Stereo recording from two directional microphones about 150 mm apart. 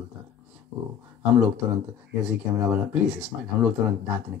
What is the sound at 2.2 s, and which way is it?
Speech, 10° right (ahead or behind).